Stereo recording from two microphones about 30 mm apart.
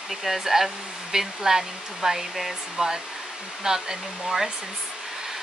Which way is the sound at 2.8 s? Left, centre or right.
Right.